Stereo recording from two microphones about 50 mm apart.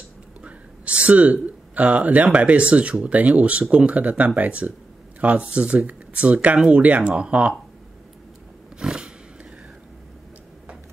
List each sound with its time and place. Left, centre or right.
0.4 s speech: right
8.7 s roaring cats: centre